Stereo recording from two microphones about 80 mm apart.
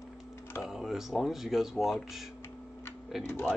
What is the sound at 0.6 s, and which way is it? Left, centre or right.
A man's voice, centre.